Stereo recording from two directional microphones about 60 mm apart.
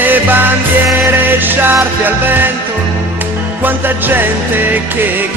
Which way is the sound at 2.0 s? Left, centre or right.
Right.